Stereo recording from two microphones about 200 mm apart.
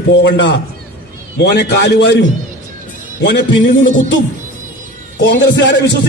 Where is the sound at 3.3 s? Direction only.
60° left (ahead or behind).